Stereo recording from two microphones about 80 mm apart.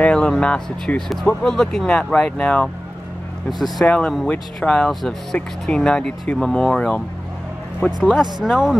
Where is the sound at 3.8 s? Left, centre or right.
Centre.